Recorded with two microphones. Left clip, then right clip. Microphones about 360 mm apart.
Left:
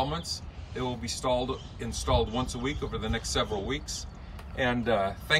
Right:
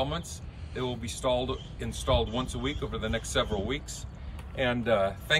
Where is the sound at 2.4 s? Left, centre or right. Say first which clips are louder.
Left 1 dB; centre.